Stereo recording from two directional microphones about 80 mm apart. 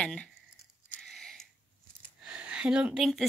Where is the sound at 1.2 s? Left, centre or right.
Centre.